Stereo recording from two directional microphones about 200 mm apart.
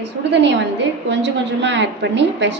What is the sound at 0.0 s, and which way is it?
A woman's voice, 60° right (ahead or behind).